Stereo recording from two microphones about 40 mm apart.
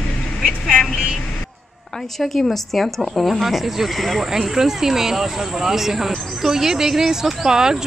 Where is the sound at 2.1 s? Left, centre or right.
Centre.